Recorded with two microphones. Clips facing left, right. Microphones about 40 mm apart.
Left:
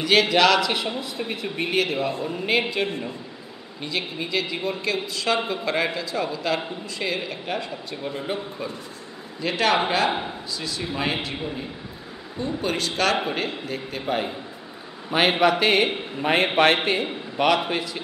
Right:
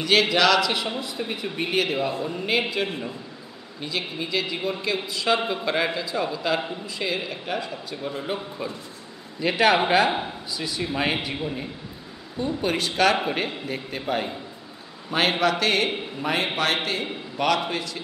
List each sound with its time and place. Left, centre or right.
0.0 s speech: centre
9.4 s a man's voice: centre
12.4 s a man's voice: centre
14.0 s a man's voice: centre
16.5 s a man's voice: left
17.0 s a man's voice: centre